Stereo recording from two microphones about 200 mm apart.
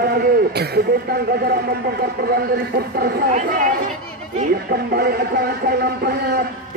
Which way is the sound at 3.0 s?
45° right (ahead or behind).